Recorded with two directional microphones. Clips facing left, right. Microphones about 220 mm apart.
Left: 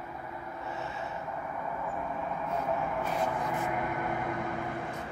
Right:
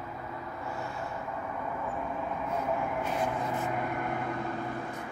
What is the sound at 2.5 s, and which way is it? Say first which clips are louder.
Music: even; 5° right (ahead or behind).